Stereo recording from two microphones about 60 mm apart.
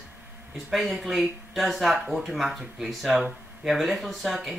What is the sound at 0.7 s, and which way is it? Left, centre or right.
Speech, centre.